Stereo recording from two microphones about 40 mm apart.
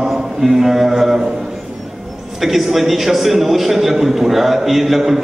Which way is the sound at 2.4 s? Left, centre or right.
Centre.